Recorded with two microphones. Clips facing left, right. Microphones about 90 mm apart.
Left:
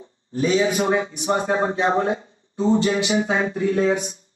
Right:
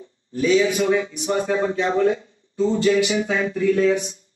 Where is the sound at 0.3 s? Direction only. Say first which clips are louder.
Right 1 dB; 35° left (ahead or behind).